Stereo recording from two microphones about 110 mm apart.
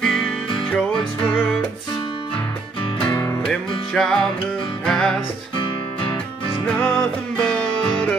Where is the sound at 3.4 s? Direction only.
5° left (ahead or behind).